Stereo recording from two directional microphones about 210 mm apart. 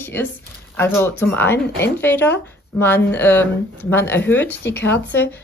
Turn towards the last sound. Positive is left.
turn(degrees=10)  # may be behind; listen again after turning